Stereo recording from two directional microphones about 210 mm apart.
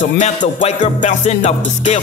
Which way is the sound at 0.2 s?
30° left (ahead or behind).